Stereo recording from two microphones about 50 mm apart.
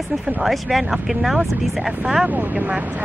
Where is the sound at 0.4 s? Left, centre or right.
Centre.